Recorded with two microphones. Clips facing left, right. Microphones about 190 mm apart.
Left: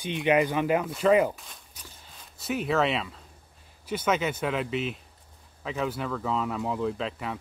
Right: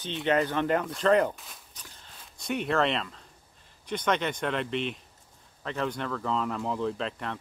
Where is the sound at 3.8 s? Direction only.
5° left (ahead or behind).